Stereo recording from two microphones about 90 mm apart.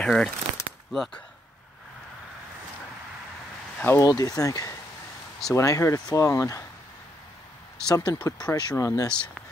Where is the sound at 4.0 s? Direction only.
45° left (ahead or behind).